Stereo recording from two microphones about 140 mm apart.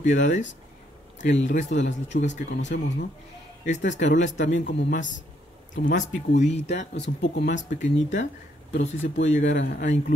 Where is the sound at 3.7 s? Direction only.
60° left (ahead or behind).